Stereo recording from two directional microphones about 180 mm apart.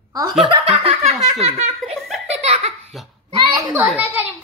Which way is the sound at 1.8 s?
Centre (ahead or behind).